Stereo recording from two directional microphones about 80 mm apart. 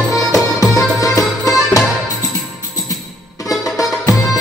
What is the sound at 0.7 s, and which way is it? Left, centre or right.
Music, left.